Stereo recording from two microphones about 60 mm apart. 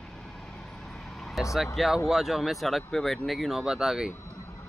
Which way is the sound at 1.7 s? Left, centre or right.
Centre.